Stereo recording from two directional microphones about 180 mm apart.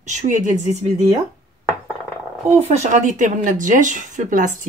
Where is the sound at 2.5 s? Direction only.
40° right (ahead or behind).